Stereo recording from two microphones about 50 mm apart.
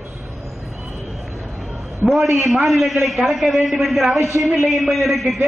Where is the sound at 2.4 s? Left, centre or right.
Centre.